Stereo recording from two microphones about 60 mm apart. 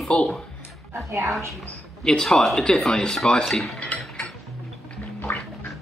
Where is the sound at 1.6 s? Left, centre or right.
Centre.